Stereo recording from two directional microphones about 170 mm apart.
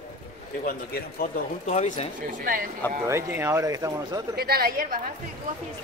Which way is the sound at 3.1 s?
15° right (ahead or behind).